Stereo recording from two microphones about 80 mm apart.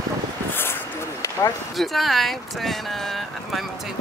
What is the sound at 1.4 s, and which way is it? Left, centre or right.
Speech, left.